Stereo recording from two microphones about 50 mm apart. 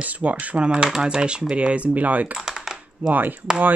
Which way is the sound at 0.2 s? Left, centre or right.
Right.